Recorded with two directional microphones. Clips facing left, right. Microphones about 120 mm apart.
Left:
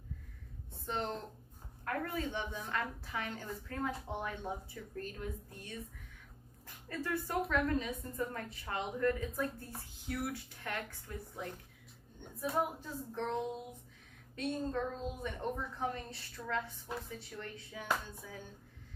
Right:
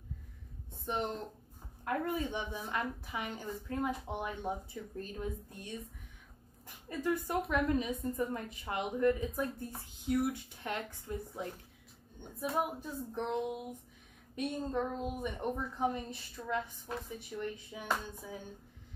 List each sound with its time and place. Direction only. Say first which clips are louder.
0.8 s a woman's voice: right 2 dB; 15° right (ahead or behind)
6.9 s a woman's voice: right 3 dB; 15° right (ahead or behind)